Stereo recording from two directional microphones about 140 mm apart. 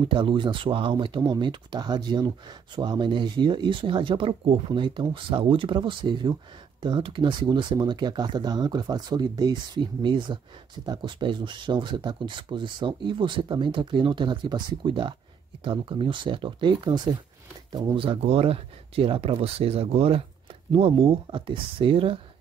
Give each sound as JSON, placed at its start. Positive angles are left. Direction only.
{"t": 0.1, "sound": "speech", "side_deg": -35}